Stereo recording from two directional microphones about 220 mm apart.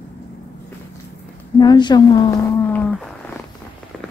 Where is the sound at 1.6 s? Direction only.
20° left (ahead or behind).